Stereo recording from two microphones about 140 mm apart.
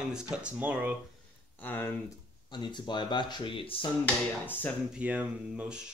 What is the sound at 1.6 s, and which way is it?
Speech, 15° left (ahead or behind).